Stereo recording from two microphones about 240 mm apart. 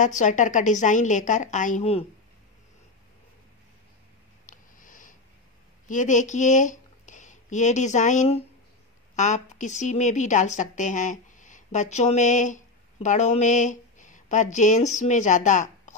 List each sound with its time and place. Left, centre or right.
0.0 s a woman's voice: left
4.5 s a sound: left
5.9 s a woman's voice: left